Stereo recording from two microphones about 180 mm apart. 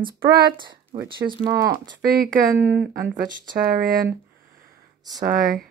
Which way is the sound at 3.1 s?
50° right (ahead or behind).